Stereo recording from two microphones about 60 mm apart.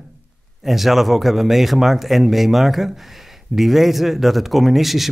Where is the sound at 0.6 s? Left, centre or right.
Centre.